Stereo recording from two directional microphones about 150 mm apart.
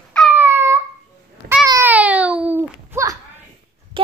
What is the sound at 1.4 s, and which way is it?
Babbling, 75° right (ahead or behind).